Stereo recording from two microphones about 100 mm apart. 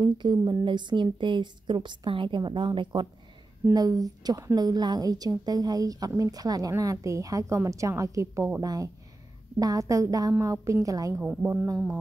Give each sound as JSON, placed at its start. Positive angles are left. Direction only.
{"t": 0.0, "sound": "a woman's voice", "side_deg": -50}
{"t": 3.7, "sound": "a woman's voice", "side_deg": -40}